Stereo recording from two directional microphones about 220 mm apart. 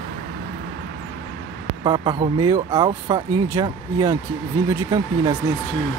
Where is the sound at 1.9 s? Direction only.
20° right (ahead or behind).